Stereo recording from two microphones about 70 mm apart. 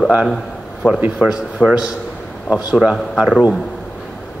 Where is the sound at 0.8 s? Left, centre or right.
Left.